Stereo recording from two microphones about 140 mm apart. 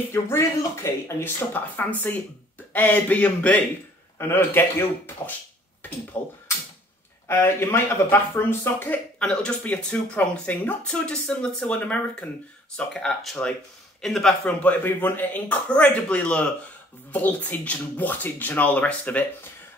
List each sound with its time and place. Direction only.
0.1 s speech: 20° left (ahead or behind)